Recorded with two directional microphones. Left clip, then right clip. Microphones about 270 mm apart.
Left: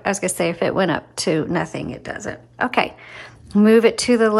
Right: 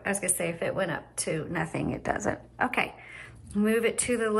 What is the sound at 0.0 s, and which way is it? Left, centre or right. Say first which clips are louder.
A woman's voice: left 9 dB; centre.